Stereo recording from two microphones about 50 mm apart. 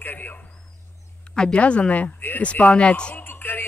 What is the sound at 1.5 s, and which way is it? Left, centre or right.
Speech, left.